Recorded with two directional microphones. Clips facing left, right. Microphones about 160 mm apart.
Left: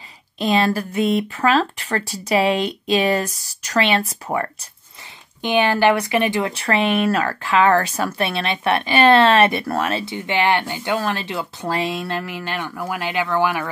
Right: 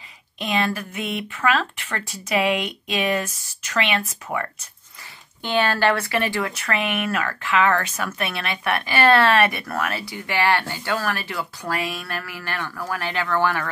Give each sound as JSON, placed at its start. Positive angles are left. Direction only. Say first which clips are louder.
{"t": 0.4, "sound": "speech", "louder": "left 5 dB", "side_deg": 35}
{"t": 5.4, "sound": "speech", "louder": "left 4 dB", "side_deg": 15}